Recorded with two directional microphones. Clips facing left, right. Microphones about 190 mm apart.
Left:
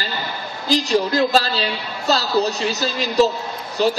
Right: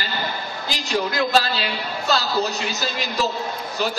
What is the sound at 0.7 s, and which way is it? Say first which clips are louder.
Speech: left 14 dB; centre (ahead or behind).